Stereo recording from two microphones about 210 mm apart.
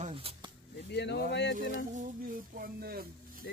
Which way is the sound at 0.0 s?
25° right (ahead or behind).